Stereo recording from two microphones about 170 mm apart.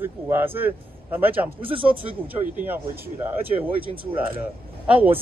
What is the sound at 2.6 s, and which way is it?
Speech, 10° right (ahead or behind).